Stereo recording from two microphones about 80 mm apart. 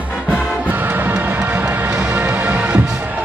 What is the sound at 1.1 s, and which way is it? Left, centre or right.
Music, centre.